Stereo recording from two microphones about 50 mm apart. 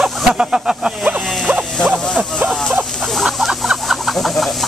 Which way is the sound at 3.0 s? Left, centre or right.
Centre.